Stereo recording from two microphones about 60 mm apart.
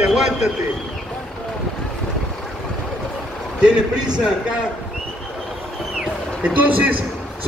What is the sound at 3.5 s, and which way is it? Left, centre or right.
A man's voice, centre.